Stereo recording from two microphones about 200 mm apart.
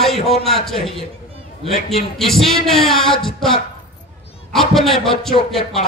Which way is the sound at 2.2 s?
Centre (ahead or behind).